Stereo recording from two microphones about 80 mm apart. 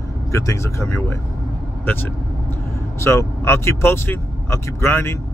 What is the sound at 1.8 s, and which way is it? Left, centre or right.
Speech, left.